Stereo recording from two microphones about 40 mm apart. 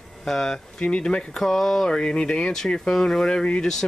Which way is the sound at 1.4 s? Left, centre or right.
Centre.